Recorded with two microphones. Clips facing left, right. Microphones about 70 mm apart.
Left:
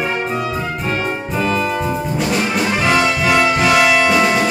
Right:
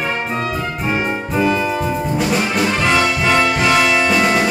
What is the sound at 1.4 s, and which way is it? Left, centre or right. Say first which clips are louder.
Brass instrument: right 1 dB; centre.